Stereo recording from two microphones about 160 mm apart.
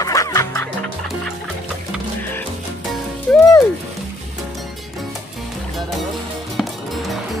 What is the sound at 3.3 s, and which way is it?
Music, 5° left (ahead or behind).